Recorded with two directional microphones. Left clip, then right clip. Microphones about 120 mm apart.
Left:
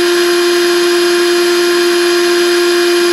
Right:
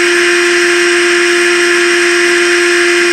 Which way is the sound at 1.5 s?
30° left (ahead or behind).